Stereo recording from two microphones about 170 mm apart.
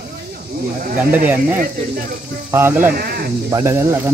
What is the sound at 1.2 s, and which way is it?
Speech, 10° right (ahead or behind).